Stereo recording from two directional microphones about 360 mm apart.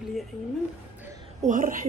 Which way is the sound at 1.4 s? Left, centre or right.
Right.